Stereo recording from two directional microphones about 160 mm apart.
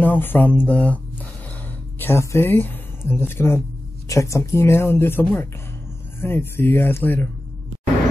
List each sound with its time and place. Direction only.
0.0 s speech: 10° left (ahead or behind)